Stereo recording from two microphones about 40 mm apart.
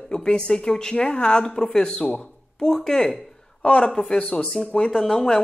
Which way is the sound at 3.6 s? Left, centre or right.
Left.